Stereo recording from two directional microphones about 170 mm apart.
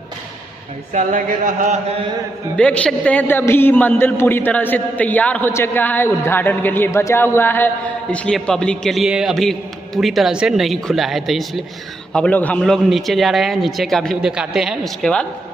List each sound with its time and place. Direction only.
0.9 s speech: 50° right (ahead or behind)
2.5 s a man's voice: 5° left (ahead or behind)